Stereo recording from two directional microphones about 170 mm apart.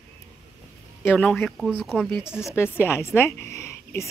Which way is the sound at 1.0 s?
10° left (ahead or behind).